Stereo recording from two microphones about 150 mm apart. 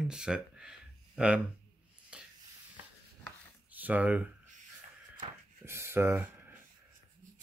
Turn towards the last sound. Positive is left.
turn(degrees=-15)  # may be behind; listen again after turning